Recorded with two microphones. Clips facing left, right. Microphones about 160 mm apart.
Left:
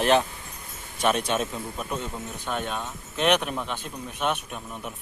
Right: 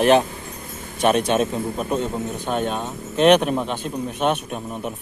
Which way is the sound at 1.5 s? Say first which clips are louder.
Right 8 dB; 35° right (ahead or behind).